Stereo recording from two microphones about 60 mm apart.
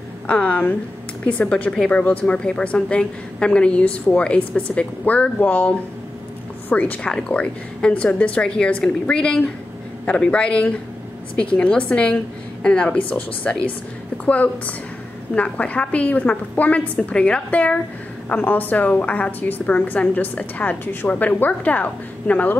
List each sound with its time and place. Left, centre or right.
0.3 s a woman's voice: left
1.5 s a woman's voice: centre
7.1 s a woman's voice: centre
17.1 s a woman's voice: centre